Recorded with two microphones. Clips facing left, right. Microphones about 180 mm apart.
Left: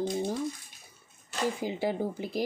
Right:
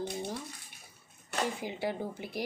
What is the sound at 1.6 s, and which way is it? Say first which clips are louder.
Speech: left 5 dB; 25° left (ahead or behind).